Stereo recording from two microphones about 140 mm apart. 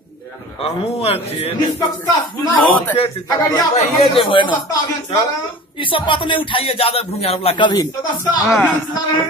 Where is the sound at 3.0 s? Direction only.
30° left (ahead or behind).